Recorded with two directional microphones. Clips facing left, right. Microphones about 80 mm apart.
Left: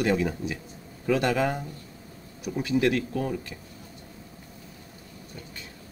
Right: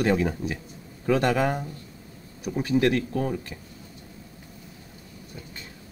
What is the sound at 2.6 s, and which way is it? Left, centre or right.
Speech, right.